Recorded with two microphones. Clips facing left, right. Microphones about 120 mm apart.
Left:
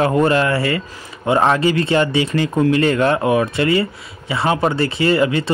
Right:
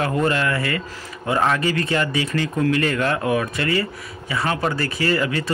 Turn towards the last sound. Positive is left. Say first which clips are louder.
# left 5 dB
turn(degrees=25)  # may be behind; listen again after turning